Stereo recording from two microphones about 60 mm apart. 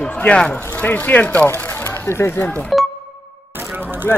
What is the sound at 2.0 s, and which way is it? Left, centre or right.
Speech, left.